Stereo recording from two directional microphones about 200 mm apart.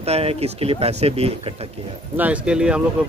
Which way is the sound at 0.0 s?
30° right (ahead or behind).